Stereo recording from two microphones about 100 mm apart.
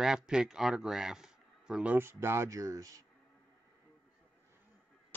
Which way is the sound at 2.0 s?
25° right (ahead or behind).